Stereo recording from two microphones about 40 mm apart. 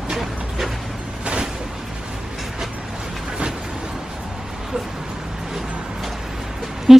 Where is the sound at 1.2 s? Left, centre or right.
Right.